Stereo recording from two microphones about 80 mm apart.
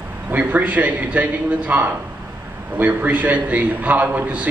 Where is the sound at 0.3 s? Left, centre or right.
Right.